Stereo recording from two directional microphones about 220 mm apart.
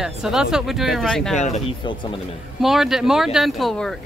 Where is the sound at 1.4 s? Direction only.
25° left (ahead or behind).